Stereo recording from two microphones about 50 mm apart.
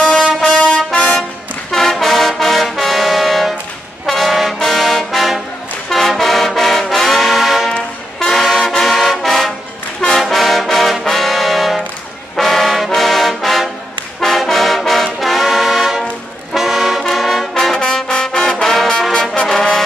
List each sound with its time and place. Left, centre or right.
0.0 s brass instrument: centre
1.7 s trombone: centre
4.0 s brass instrument: centre
4.6 s trombone: centre
5.9 s brass instrument: centre
8.2 s music: centre
10.0 s trombone: centre
15.1 s brass instrument: centre
16.5 s music: centre
17.1 s trombone: centre
17.7 s trombone: centre